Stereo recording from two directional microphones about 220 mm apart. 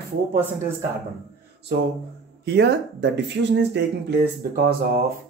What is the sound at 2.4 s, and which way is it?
Speech, 50° right (ahead or behind).